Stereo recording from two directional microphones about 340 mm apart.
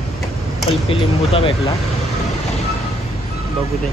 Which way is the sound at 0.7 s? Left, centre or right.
Centre.